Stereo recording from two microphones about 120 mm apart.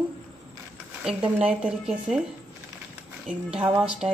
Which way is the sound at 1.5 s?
10° right (ahead or behind).